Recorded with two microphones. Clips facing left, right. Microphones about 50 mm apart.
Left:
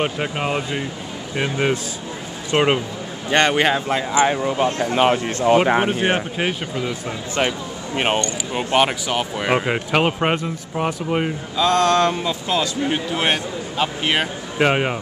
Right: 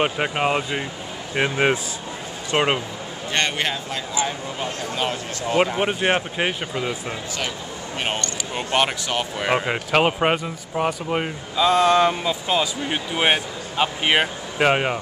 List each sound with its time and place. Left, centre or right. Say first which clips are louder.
0.0 s speech: right 1 dB; centre
2.5 s speech: left 3 dB; centre
3.3 s speech: left 7 dB; centre
3.7 s speech: left 8 dB; left
5.9 s speech: left 1 dB; centre
7.3 s speech: left 7 dB; left
8.5 s speech: left 3 dB; centre
14.6 s speech: left 1 dB; centre